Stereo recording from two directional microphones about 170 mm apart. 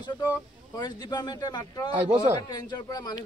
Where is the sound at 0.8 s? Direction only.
25° left (ahead or behind).